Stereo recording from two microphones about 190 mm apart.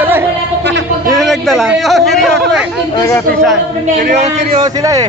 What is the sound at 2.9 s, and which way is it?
Speech, 15° left (ahead or behind).